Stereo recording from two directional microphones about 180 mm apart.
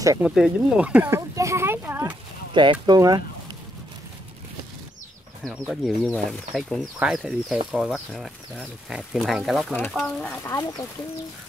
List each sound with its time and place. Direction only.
0.2 s speech: 5° right (ahead or behind)
2.5 s speech: 25° right (ahead or behind)
5.7 s speech: centre (ahead or behind)
9.7 s speech: 10° left (ahead or behind)